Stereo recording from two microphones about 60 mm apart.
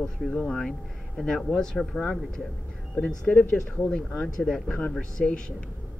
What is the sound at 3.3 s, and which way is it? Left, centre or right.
Speech, left.